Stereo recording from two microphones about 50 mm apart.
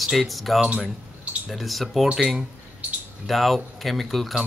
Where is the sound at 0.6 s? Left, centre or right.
Centre.